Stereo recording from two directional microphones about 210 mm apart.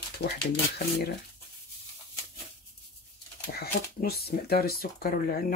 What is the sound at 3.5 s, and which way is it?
Speech, 45° left (ahead or behind).